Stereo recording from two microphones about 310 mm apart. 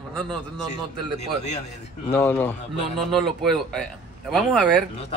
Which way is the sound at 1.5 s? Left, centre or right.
Left.